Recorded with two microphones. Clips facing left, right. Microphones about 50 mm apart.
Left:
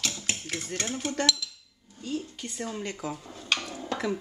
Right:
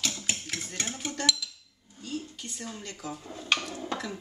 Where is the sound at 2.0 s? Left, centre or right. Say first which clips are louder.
Left 3 dB; left.